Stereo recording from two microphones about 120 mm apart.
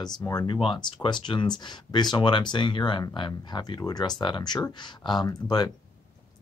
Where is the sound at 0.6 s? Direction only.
45° left (ahead or behind).